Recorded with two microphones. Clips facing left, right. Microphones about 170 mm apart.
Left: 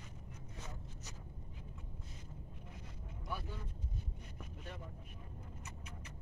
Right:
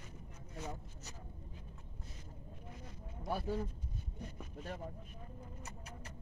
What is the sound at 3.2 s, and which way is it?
Vehicle, 40° right (ahead or behind).